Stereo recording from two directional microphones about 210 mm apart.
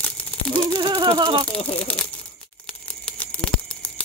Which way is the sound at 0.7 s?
20° right (ahead or behind).